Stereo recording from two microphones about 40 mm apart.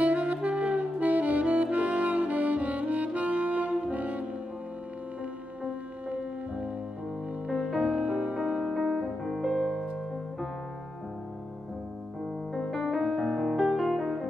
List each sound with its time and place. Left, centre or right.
0.0 s saxophone: right
5.6 s music: right
8.6 s music: centre
12.5 s music: centre